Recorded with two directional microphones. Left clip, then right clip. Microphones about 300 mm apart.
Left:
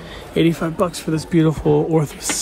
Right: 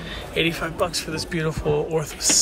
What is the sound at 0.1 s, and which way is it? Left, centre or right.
Speech, centre.